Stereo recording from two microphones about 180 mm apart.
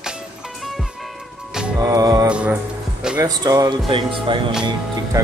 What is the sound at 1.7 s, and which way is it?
Speech, 20° right (ahead or behind).